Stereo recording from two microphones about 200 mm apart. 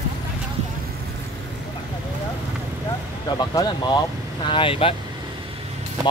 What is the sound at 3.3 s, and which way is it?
Speech, 20° left (ahead or behind).